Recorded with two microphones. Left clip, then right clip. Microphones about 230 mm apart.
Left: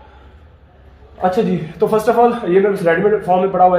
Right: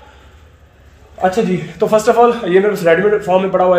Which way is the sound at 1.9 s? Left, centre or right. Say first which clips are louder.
Right 3 dB; right.